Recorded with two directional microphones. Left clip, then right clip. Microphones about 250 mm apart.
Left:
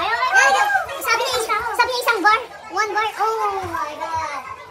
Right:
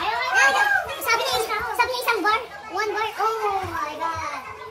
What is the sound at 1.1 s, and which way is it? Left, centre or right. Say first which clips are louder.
Children playing: left 2 dB; centre.